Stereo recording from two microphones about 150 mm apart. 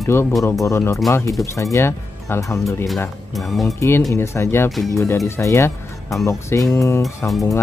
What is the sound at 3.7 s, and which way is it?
Speech, 20° left (ahead or behind).